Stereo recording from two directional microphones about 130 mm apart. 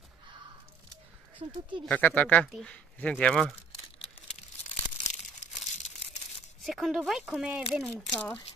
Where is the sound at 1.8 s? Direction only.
10° left (ahead or behind).